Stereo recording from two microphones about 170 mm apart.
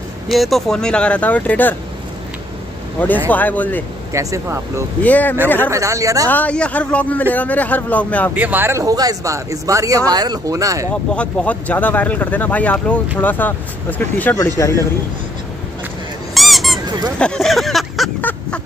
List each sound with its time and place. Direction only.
0.3 s speech: centre (ahead or behind)
3.3 s speech: 10° left (ahead or behind)
4.1 s speech: 20° right (ahead or behind)
5.0 s speech: 10° left (ahead or behind)
5.7 s speech: 20° right (ahead or behind)
6.2 s speech: 10° left (ahead or behind)
8.4 s speech: 10° right (ahead or behind)
11.1 s speech: 10° left (ahead or behind)
16.3 s squeak: centre (ahead or behind)
17.2 s a sound: 5° left (ahead or behind)